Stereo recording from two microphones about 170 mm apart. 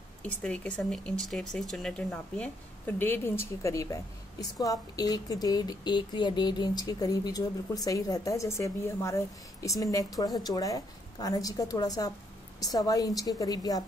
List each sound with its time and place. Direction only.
0.2 s a woman's voice: 5° left (ahead or behind); by 13.8 s 20° left (ahead or behind)